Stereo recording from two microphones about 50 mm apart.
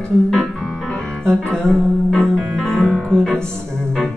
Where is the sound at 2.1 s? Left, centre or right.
Centre.